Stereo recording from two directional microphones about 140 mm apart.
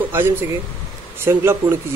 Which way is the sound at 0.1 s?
15° right (ahead or behind).